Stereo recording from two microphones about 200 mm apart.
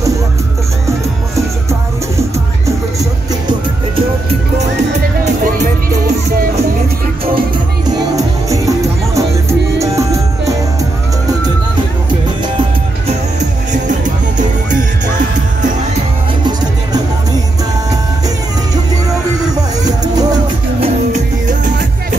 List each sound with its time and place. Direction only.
7.3 s music: 20° right (ahead or behind)
19.8 s music: 20° right (ahead or behind)
20.8 s music: 35° right (ahead or behind)